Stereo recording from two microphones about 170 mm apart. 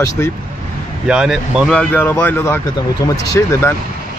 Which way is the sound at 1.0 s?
5° right (ahead or behind).